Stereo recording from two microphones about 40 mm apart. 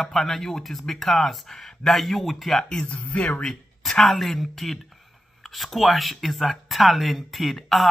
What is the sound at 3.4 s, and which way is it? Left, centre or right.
Speech, centre.